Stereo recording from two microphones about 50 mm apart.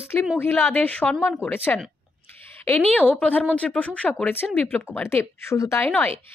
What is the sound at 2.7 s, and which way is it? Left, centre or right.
A woman's voice, left.